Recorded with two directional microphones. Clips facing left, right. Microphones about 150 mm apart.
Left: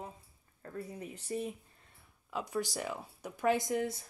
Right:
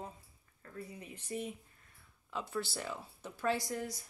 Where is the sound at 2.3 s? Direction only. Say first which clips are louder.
Left 3 dB; 15° left (ahead or behind).